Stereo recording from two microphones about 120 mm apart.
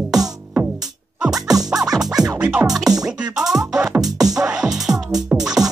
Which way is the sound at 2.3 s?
10° right (ahead or behind).